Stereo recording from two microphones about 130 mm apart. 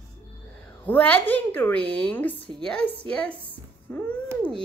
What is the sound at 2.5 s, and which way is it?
Speech, 40° right (ahead or behind).